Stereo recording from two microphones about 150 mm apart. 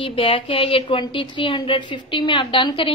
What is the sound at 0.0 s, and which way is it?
A woman's voice, 35° left (ahead or behind).